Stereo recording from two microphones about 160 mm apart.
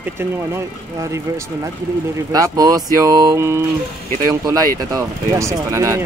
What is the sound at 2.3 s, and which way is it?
Speech, 20° right (ahead or behind).